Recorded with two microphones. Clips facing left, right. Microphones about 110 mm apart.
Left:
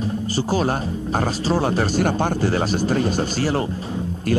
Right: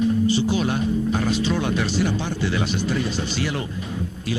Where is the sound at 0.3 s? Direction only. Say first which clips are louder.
Even; 40° left (ahead or behind).